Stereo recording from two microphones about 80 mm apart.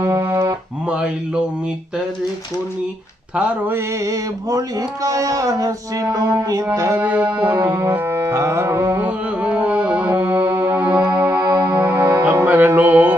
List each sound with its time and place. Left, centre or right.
0.1 s music: right
0.8 s music: centre
3.7 s mantra: right
7.0 s music: centre
7.8 s music: right
8.9 s music: centre
11.4 s music: right
11.8 s music: right
12.3 s music: right